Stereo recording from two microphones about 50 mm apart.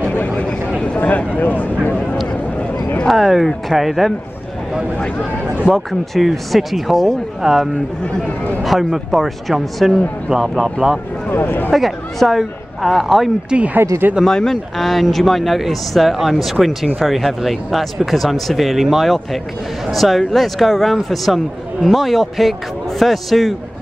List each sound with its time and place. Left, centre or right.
0.8 s speech: left
3.1 s speech: centre
5.7 s speech: centre
11.2 s speech: left
11.7 s speech: centre
13.7 s speech: right
14.2 s speech: centre